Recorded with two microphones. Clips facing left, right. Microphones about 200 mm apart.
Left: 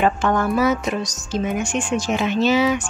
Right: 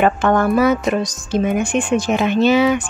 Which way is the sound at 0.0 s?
60° right (ahead or behind).